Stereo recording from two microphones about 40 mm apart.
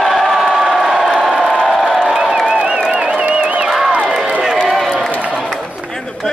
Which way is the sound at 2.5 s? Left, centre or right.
Right.